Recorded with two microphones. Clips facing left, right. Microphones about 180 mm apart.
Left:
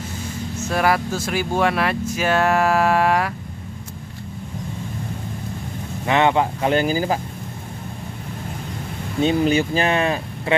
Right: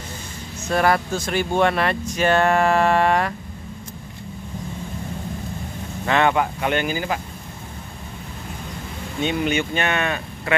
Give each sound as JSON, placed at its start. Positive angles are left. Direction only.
{"t": 0.6, "sound": "speech", "side_deg": 5}
{"t": 6.0, "sound": "speech", "side_deg": 20}
{"t": 9.2, "sound": "speech", "side_deg": 35}